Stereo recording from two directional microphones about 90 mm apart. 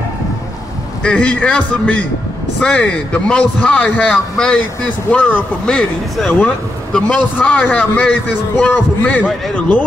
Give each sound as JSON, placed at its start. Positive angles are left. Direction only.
{"t": 1.0, "sound": "a man's voice", "side_deg": 15}